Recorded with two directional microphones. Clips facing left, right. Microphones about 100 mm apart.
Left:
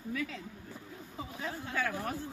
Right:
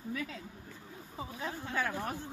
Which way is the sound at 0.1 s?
30° right (ahead or behind).